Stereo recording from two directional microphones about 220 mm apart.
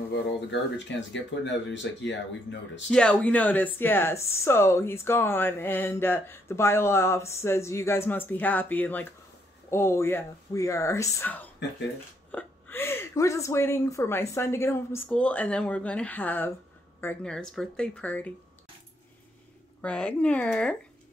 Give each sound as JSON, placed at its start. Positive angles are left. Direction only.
{"t": 0.5, "sound": "speech", "side_deg": 55}
{"t": 2.9, "sound": "speech", "side_deg": 5}
{"t": 19.8, "sound": "speech", "side_deg": 5}